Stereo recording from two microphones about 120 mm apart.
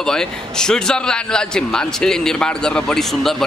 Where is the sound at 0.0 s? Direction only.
5° left (ahead or behind).